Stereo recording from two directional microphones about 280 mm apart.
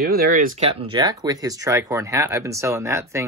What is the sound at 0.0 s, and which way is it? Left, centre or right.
Speech, right.